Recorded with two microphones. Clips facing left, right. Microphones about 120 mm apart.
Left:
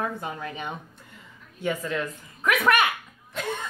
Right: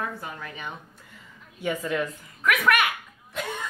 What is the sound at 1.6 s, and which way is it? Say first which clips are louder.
Speech: right 1 dB; 10° right (ahead or behind).